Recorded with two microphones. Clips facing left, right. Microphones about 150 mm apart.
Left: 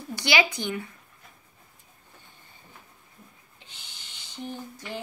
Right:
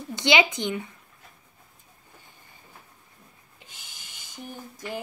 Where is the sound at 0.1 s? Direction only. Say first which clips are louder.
Right 3 dB; 20° right (ahead or behind).